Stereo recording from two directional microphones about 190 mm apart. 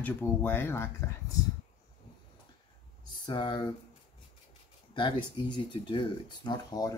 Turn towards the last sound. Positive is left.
turn(degrees=20)  # may be behind; listen again after turning